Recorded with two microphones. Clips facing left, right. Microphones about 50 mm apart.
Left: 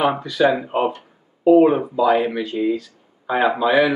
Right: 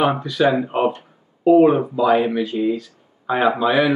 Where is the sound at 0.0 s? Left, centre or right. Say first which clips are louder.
Even; centre.